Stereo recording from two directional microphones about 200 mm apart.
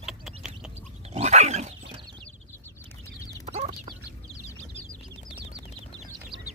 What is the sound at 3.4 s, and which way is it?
Chicken, 30° right (ahead or behind).